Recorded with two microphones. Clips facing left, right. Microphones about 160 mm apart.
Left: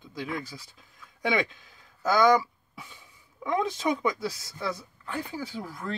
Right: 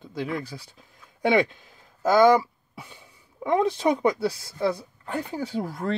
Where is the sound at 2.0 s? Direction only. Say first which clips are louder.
Right 4 dB; 30° right (ahead or behind).